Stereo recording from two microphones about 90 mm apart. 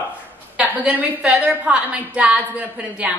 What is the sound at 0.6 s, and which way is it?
A woman's voice, 15° right (ahead or behind).